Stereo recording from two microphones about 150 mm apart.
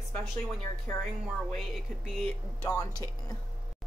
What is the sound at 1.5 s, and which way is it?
Speech, centre (ahead or behind).